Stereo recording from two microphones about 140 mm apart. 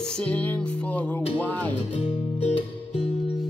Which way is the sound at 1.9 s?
45° left (ahead or behind).